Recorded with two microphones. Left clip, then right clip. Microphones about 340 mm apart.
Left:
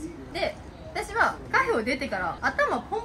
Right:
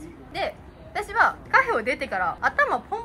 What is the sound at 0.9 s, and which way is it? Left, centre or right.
A woman's voice, centre.